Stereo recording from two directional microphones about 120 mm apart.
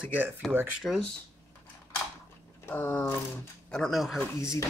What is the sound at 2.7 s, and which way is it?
Speech, 15° left (ahead or behind).